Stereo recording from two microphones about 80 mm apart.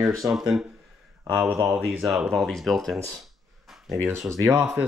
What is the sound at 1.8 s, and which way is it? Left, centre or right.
Speech, centre.